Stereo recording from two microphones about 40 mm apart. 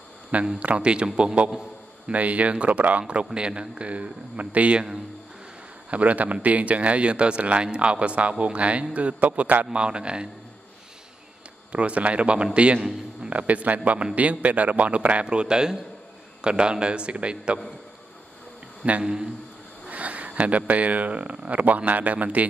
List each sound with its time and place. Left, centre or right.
0.6 s a man's voice: right
2.1 s speech: right
5.9 s a man's voice: right
11.7 s a man's voice: right
18.8 s speech: right